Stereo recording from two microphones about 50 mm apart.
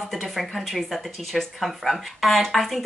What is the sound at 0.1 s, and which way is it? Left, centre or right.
Speech, centre.